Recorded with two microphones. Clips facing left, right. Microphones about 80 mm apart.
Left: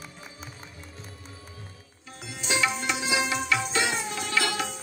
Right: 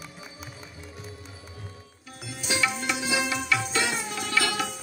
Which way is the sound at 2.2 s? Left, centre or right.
Left.